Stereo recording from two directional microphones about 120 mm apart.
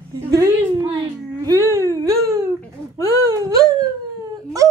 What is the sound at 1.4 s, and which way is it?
Wail, 25° right (ahead or behind).